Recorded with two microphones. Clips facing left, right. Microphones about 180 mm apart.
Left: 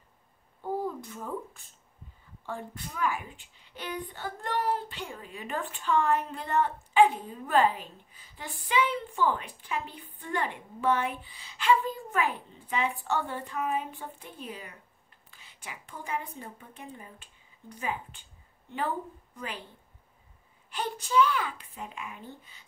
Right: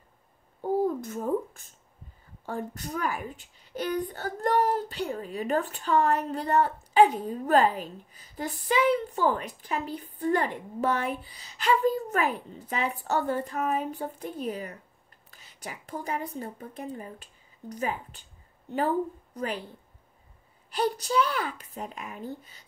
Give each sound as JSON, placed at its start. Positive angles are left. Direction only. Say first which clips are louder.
{"t": 0.6, "sound": "a sound", "louder": "right 6 dB", "side_deg": -45}
{"t": 2.4, "sound": "a woman's voice", "louder": "right 4 dB", "side_deg": -40}
{"t": 19.3, "sound": "a woman's voice", "louder": "right 7 dB", "side_deg": -40}
{"t": 20.7, "sound": "a woman's voice", "louder": "right 1 dB", "side_deg": -40}